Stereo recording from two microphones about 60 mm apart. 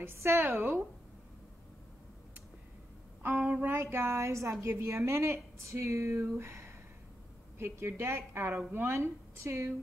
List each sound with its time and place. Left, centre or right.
0.0 s a woman's voice: right
3.2 s a woman's voice: right